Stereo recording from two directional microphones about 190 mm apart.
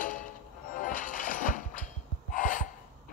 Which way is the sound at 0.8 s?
45° left (ahead or behind).